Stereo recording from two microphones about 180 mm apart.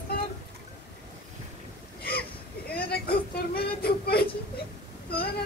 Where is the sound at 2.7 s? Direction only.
60° left (ahead or behind).